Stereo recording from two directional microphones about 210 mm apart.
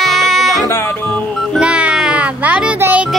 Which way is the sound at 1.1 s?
Centre (ahead or behind).